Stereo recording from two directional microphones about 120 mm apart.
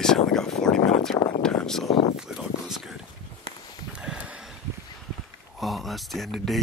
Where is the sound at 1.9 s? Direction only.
60° left (ahead or behind).